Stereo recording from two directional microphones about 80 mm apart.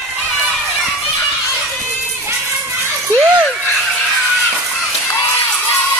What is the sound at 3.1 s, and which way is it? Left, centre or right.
Speech, left.